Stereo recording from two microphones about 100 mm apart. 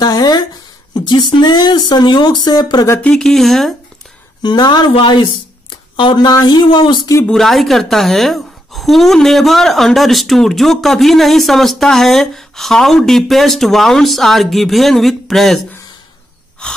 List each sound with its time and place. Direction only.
0.0 s speech: 40° left (ahead or behind)
3.0 s speech: 5° left (ahead or behind)
4.4 s speech: 45° left (ahead or behind)
4.9 s speech: 60° left (ahead or behind)
7.2 s speech: 5° left (ahead or behind)